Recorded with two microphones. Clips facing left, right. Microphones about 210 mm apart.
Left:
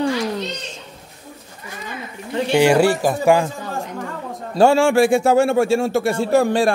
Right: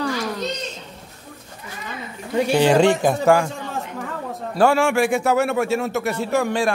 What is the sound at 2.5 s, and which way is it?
Speech, 10° left (ahead or behind).